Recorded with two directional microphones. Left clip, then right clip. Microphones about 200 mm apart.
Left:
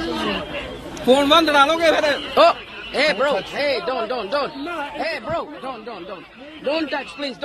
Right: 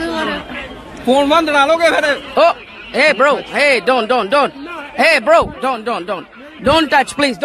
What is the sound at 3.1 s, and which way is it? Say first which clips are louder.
Speech: right 7 dB; 40° right (ahead or behind).